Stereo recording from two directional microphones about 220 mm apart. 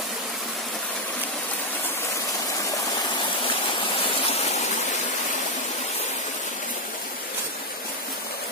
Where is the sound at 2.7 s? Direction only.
20° left (ahead or behind).